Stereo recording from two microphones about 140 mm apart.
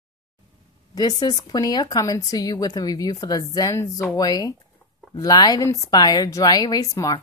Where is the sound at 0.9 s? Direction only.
30° left (ahead or behind).